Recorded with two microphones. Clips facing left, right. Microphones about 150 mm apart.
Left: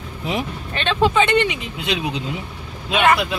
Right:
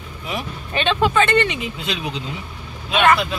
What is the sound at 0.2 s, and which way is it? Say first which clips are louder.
Speech: left 4 dB; 25° left (ahead or behind).